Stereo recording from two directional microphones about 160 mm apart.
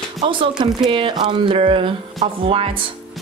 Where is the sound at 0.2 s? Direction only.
30° right (ahead or behind).